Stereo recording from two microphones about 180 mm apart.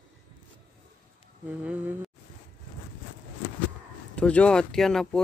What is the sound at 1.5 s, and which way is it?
Speech, 5° right (ahead or behind).